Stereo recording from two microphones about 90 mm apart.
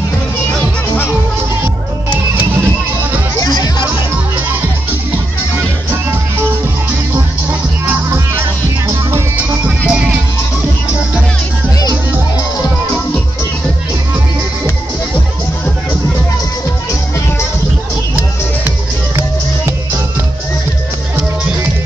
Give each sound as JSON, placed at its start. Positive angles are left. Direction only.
{"t": 3.3, "sound": "music", "side_deg": 45}
{"t": 8.8, "sound": "music", "side_deg": -30}
{"t": 9.7, "sound": "music", "side_deg": -15}